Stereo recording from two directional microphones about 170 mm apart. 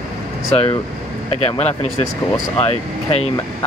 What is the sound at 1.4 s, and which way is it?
Speech, 40° left (ahead or behind).